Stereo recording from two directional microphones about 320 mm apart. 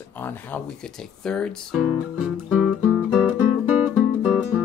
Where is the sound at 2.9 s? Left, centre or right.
Centre.